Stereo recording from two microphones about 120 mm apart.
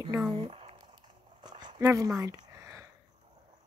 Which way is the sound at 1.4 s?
35° right (ahead or behind).